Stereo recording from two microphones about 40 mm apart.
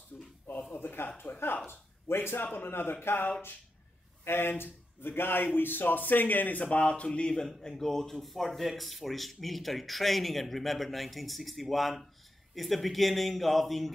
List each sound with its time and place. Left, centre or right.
0.1 s a sound: centre
0.7 s speech: left
1.7 s speech: left
2.4 s a man's voice: left
7.7 s speech: centre